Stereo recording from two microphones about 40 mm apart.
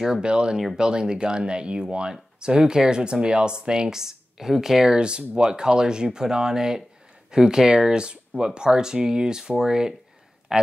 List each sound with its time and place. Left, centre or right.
0.0 s speech: centre